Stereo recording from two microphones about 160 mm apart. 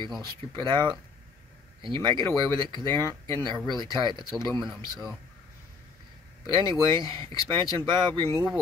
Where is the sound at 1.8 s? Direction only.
30° right (ahead or behind).